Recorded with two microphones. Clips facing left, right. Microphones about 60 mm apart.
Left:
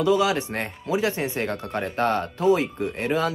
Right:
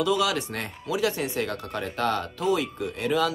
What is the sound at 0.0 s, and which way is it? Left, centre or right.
Speech, left.